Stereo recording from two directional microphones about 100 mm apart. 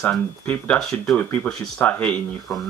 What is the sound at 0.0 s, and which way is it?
Speech, 10° left (ahead or behind).